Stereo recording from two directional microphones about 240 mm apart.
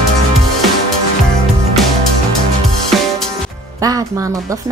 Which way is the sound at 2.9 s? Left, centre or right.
Centre.